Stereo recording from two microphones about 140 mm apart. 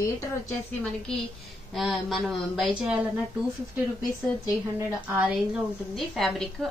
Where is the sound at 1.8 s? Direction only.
Centre (ahead or behind).